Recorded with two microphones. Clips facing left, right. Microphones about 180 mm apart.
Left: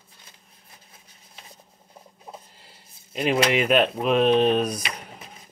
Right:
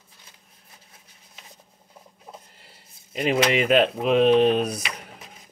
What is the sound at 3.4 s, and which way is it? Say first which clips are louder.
Speech: right 1 dB; 20° right (ahead or behind).